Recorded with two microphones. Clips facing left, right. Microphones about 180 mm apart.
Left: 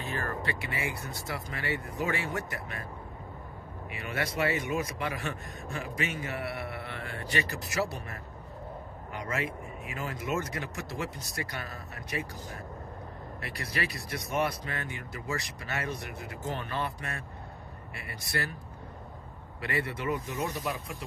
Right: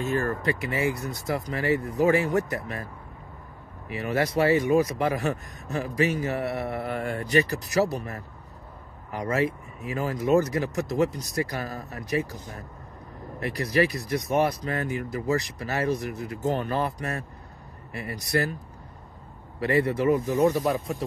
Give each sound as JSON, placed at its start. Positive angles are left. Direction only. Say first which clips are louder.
{"t": 0.0, "sound": "speech", "louder": "right 8 dB", "side_deg": -45}
{"t": 3.9, "sound": "speech", "louder": "right 9 dB", "side_deg": -35}
{"t": 6.8, "sound": "speech", "louder": "right 10 dB", "side_deg": -45}
{"t": 9.2, "sound": "speech", "louder": "right 9 dB", "side_deg": -30}
{"t": 13.6, "sound": "speech", "louder": "right 12 dB", "side_deg": -35}
{"t": 19.6, "sound": "speech", "louder": "right 10 dB", "side_deg": -35}
{"t": 20.6, "sound": "speech", "louder": "right 9 dB", "side_deg": -45}